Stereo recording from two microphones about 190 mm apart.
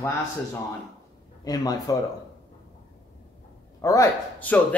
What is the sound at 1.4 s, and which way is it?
Speech, 20° left (ahead or behind).